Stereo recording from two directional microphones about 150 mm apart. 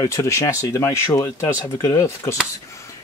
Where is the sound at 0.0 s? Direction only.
20° left (ahead or behind).